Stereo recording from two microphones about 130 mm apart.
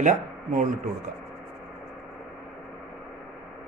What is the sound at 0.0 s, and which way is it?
Speech, 80° right.